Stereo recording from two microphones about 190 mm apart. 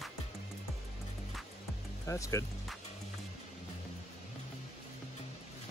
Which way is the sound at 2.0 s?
15° left (ahead or behind).